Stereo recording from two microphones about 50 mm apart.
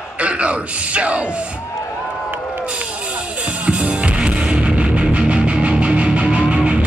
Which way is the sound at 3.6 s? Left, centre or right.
Right.